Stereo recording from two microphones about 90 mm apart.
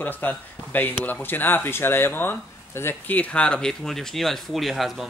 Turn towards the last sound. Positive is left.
turn(degrees=0)  # may be behind; listen again after turning